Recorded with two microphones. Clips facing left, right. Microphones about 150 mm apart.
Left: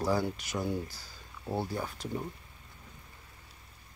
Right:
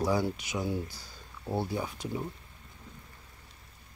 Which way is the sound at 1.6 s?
10° right (ahead or behind).